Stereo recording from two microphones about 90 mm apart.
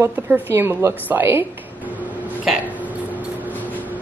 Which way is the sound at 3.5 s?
20° left (ahead or behind).